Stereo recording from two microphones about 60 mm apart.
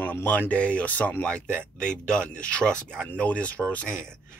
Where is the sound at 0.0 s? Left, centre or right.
Left.